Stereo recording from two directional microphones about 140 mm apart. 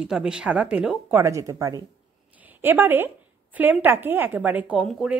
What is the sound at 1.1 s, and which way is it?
Speech, 20° right (ahead or behind).